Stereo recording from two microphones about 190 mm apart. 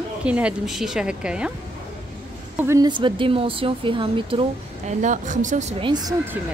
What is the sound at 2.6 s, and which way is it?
A woman's voice, 15° right (ahead or behind).